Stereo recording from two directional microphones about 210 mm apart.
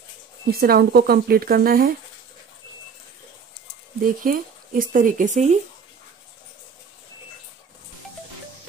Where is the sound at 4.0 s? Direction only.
40° right (ahead or behind).